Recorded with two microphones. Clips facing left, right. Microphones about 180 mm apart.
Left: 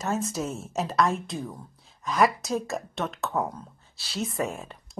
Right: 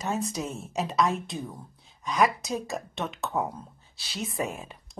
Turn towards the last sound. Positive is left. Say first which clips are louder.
# left 2 dB
turn(degrees=0)  # may be behind; listen again after turning